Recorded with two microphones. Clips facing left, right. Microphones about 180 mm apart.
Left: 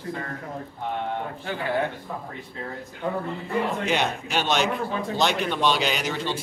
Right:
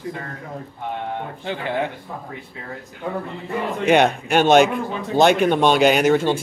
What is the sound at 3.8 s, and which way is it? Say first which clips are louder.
A man's voice: right 9 dB; 60° right (ahead or behind).